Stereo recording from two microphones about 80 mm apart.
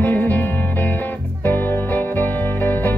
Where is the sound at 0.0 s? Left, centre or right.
Left.